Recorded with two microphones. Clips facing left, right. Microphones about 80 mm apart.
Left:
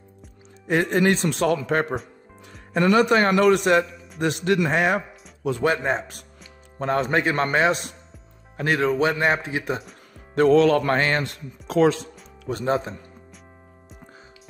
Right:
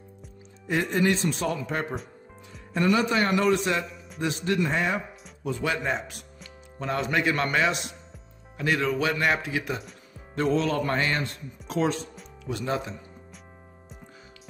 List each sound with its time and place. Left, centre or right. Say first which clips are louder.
0.7 s a man's voice: left 4 dB; left
2.7 s a man's voice: left 5 dB; left
5.6 s a man's voice: left 6 dB; left
10.3 s music: left 9 dB; left
12.4 s a man's voice: left 6 dB; left